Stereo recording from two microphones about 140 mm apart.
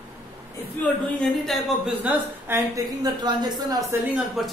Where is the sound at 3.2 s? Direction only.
30° right (ahead or behind).